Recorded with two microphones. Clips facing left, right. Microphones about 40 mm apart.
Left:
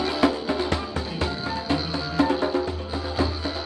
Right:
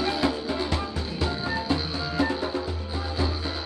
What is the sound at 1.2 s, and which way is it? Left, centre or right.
Music, centre.